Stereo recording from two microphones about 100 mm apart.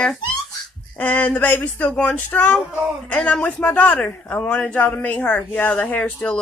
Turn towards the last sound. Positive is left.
turn(degrees=15)  # may be behind; listen again after turning